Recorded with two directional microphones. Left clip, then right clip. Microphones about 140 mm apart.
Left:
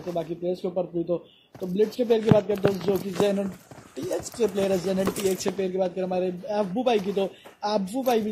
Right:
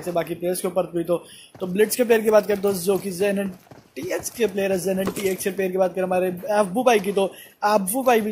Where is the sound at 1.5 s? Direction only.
Centre (ahead or behind).